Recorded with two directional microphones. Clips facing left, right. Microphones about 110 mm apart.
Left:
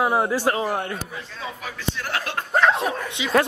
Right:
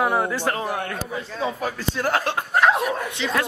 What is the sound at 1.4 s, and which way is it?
Speech, 45° right (ahead or behind).